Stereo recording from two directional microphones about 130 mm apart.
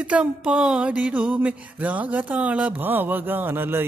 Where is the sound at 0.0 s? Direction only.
10° right (ahead or behind).